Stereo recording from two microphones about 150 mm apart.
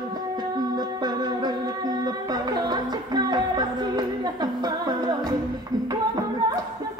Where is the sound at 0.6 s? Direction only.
25° right (ahead or behind).